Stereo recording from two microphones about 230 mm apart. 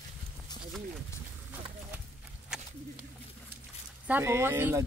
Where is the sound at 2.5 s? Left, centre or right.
Centre.